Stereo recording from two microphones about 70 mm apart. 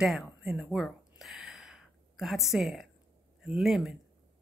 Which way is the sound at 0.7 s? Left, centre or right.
Centre.